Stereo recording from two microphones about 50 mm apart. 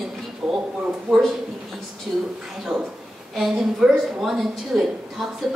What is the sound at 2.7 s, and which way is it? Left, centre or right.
Speech, right.